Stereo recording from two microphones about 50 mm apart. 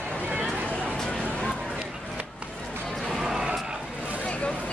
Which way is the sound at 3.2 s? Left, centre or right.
Centre.